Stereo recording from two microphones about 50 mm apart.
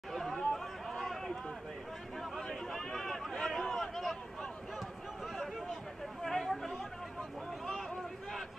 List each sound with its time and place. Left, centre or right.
0.1 s chatter: centre
2.7 s a sound: centre
6.2 s chatter: centre